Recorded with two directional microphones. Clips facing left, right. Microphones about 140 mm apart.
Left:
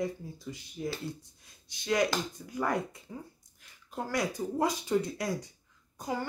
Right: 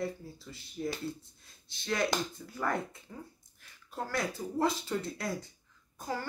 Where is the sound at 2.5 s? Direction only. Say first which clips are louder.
Left 3 dB; 15° left (ahead or behind).